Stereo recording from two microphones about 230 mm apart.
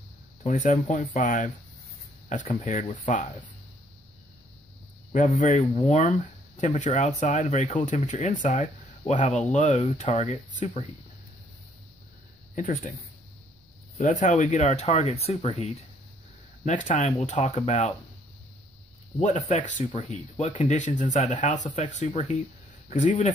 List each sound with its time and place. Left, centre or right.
0.4 s speech: left
2.6 s speech: left
5.1 s speech: left
12.5 s speech: left
13.9 s speech: left
19.1 s speech: left